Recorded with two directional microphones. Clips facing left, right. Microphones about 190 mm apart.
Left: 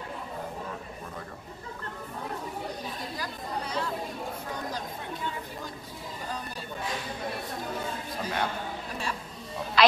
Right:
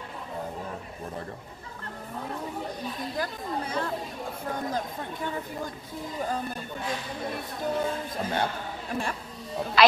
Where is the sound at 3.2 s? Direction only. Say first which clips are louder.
Right 6 dB; 50° right (ahead or behind).